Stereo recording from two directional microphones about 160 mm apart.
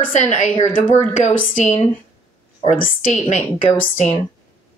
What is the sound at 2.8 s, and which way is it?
A woman's voice, 55° left (ahead or behind).